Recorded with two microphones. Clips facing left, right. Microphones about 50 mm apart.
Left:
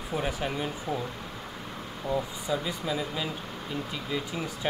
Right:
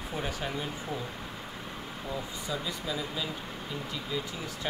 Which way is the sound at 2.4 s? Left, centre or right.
Left.